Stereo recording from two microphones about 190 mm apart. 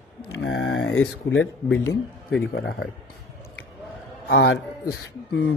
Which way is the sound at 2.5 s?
65° left (ahead or behind).